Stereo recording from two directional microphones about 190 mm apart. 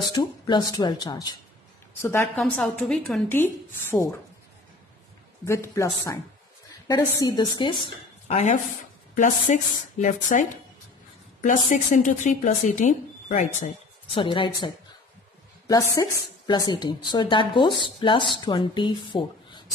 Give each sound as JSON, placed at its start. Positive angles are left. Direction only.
{"t": 0.1, "sound": "a woman's voice", "side_deg": 20}
{"t": 5.5, "sound": "a woman's voice", "side_deg": 15}
{"t": 8.3, "sound": "speech", "side_deg": 35}
{"t": 14.1, "sound": "a woman's voice", "side_deg": 25}